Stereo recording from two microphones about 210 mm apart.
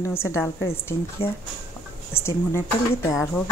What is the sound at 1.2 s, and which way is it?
Speech, 25° left (ahead or behind).